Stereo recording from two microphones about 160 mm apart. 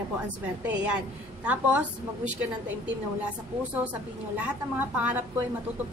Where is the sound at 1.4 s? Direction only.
10° right (ahead or behind).